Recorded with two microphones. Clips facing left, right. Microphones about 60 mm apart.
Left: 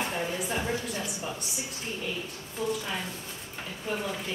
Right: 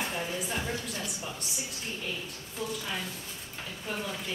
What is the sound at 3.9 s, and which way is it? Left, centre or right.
Speech, centre.